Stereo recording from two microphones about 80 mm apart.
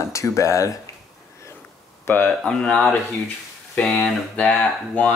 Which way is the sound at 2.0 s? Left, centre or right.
Left.